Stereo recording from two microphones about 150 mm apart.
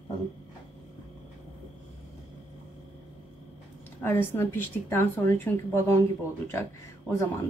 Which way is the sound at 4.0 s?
15° left (ahead or behind).